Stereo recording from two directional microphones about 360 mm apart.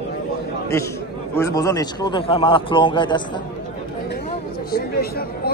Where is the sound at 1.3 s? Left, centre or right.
Centre.